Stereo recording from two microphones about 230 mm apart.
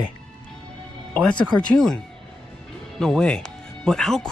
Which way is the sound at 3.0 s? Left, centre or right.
Centre.